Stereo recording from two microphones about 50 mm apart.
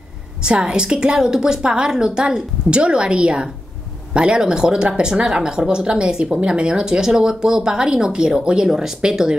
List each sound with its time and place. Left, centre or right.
0.4 s speech: centre